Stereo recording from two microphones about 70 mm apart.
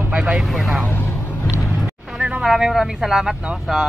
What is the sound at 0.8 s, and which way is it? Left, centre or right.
Vehicle, left.